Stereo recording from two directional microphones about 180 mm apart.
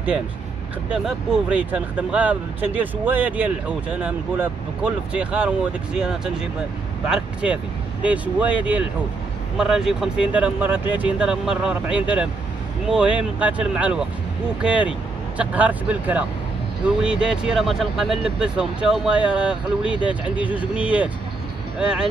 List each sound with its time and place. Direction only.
0.9 s speech: 5° right (ahead or behind)
8.0 s speech: 10° right (ahead or behind)